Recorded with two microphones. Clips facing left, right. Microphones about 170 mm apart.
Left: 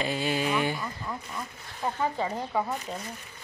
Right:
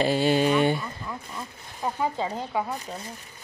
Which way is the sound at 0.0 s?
30° right (ahead or behind).